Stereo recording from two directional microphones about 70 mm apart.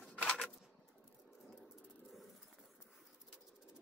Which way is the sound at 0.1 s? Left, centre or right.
Centre.